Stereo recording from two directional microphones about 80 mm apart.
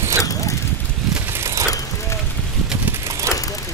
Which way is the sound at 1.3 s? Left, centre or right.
Right.